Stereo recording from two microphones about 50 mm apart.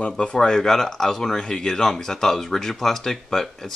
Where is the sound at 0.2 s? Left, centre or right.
Centre.